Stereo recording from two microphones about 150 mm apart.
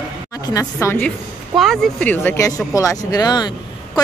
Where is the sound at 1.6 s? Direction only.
5° left (ahead or behind); by 3.5 s 25° left (ahead or behind).